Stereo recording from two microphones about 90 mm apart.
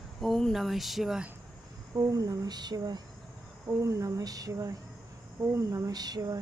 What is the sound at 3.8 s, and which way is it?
Speech, 35° right (ahead or behind).